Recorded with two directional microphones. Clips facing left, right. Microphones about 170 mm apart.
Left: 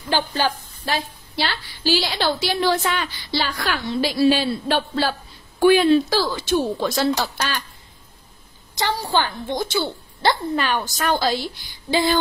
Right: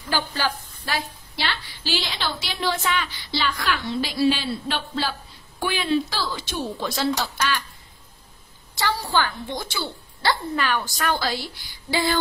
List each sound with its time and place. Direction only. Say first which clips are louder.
0.1 s a woman's voice: left 4 dB; 25° left (ahead or behind); by 7.1 s 45° left (ahead or behind)
8.7 s a woman's voice: left 2 dB; 20° left (ahead or behind)